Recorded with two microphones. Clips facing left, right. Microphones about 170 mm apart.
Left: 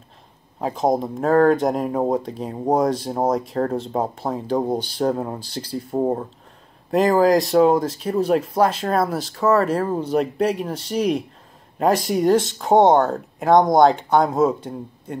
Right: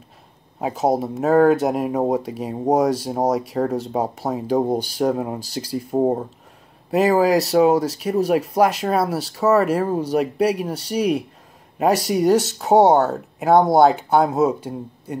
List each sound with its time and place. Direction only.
0.6 s speech: 5° right (ahead or behind)
2.0 s speech: 20° right (ahead or behind)
2.2 s speech: 10° right (ahead or behind)
6.9 s speech: 5° right (ahead or behind)